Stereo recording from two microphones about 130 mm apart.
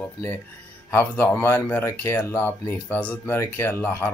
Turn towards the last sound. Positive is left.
turn(degrees=15)  # may be behind; listen again after turning